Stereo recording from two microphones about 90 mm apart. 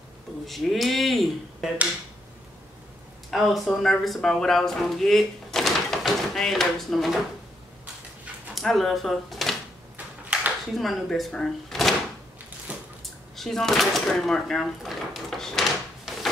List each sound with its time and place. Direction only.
0.5 s speech: centre (ahead or behind)
3.3 s speech: centre (ahead or behind)
8.5 s speech: centre (ahead or behind)
9.9 s a sound: 15° right (ahead or behind)
10.7 s speech: centre (ahead or behind)
12.7 s a sound: 15° right (ahead or behind)
13.0 s drawer open or close: 5° left (ahead or behind)